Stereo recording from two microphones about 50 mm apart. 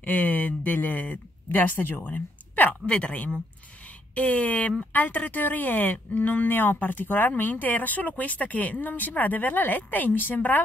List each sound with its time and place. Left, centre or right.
0.0 s speech: left
2.9 s speech: left